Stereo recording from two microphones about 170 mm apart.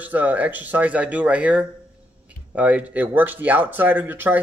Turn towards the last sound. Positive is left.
turn(degrees=-10)  # may be behind; listen again after turning